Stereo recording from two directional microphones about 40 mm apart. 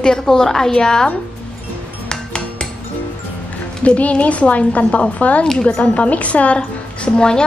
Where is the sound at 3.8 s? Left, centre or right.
Left.